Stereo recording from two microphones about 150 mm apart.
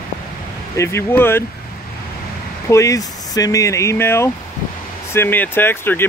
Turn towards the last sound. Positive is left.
turn(degrees=15)  # may be behind; listen again after turning